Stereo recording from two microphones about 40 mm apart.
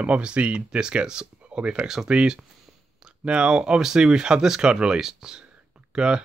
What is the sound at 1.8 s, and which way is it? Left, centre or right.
Speech, centre.